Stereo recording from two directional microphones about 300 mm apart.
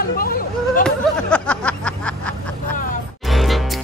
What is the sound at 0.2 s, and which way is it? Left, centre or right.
Chatter, left.